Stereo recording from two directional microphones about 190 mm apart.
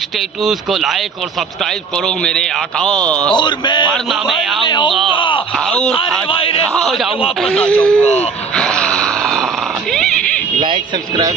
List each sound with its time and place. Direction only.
0.4 s speech: centre (ahead or behind)
2.0 s speech: 5° left (ahead or behind)
3.3 s a man's voice: 25° left (ahead or behind)
3.9 s speech: centre (ahead or behind)
4.6 s a man's voice: 25° left (ahead or behind)
5.1 s groan: 25° left (ahead or behind)
5.7 s speech: 5° left (ahead or behind)
5.9 s a man's voice: 30° left (ahead or behind)
6.7 s speech: 5° left (ahead or behind)
8.5 s a sound: 5° left (ahead or behind)
9.9 s cat: 5° left (ahead or behind)
10.6 s a sound: 25° right (ahead or behind)